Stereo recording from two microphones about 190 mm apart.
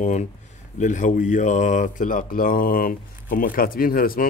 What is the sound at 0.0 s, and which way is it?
Speech, 40° left (ahead or behind).